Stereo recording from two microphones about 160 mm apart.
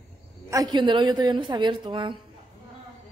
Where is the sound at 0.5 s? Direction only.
25° right (ahead or behind).